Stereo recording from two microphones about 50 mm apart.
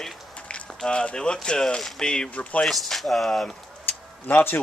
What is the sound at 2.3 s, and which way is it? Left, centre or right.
Speech, left.